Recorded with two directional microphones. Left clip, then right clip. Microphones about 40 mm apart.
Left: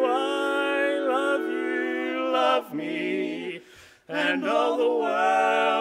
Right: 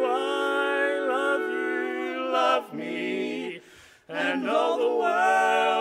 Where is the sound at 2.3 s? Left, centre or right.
Centre.